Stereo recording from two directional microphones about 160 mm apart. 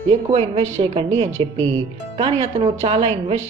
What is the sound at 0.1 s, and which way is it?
Speech, 40° right (ahead or behind).